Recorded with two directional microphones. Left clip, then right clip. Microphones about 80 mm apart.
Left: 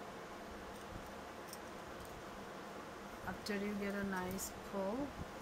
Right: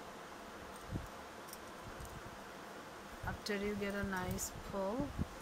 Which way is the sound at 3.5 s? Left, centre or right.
Right.